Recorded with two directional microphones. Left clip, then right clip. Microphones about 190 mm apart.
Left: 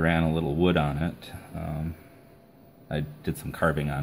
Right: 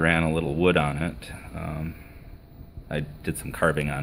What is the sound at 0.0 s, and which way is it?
Speech, 10° right (ahead or behind).